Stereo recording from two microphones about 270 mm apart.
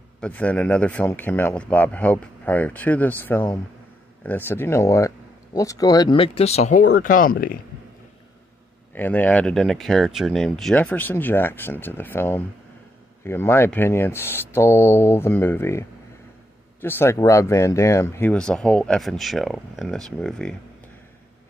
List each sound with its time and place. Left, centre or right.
0.2 s speech: centre; by 7.5 s left
8.9 s speech: centre
16.8 s speech: centre